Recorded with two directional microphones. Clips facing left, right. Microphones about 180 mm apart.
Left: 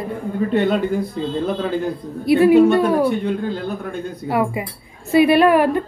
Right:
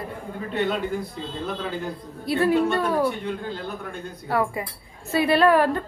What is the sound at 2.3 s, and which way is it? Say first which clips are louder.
Speech: left 9 dB; 15° left (ahead or behind).